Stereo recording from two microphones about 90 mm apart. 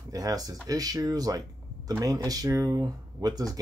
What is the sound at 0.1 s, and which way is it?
Speech, 45° right (ahead or behind).